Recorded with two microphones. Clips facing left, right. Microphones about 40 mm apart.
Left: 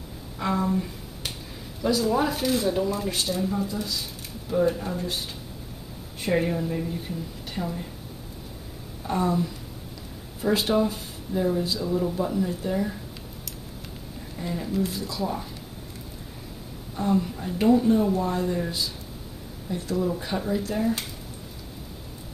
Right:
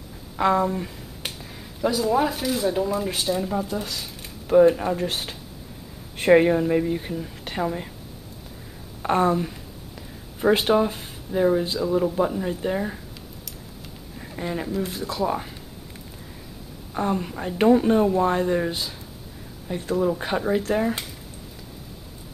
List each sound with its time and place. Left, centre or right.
0.4 s speech: right
1.2 s finger snapping: right
1.8 s speech: centre
2.3 s speech: centre
4.5 s speech: right
4.9 s speech: right
9.0 s speech: right
14.3 s speech: right
16.9 s speech: right